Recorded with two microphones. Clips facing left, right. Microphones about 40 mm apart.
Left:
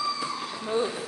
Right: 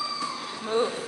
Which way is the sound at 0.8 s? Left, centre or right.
Right.